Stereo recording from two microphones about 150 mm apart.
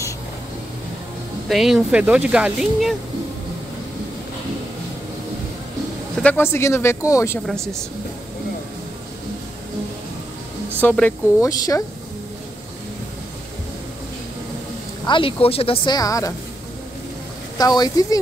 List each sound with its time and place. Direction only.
1.5 s speech: centre (ahead or behind)
6.2 s speech: 15° left (ahead or behind)
10.8 s speech: 10° left (ahead or behind)
15.0 s a woman's voice: 35° left (ahead or behind)
17.6 s speech: 25° left (ahead or behind)